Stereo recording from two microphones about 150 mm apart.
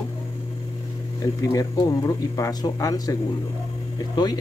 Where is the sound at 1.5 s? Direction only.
30° left (ahead or behind).